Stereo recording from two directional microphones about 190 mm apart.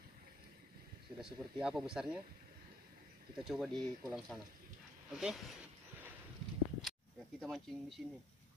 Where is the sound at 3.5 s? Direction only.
Centre (ahead or behind).